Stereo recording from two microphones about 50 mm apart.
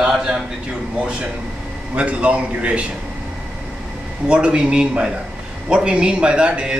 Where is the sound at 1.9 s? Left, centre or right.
Right.